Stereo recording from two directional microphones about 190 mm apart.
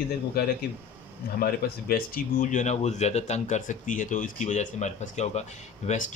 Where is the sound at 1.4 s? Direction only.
50° left (ahead or behind).